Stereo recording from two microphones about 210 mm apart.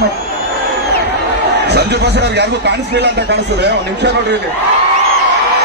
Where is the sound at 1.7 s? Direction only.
50° right (ahead or behind).